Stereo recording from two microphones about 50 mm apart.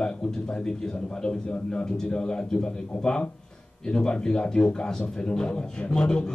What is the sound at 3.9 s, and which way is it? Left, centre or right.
Speech, centre.